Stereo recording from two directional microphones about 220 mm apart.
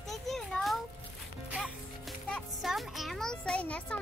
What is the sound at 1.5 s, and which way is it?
Music, centre (ahead or behind).